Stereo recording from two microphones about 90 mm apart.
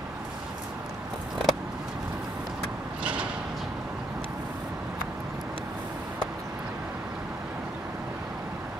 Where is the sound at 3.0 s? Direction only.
15° right (ahead or behind).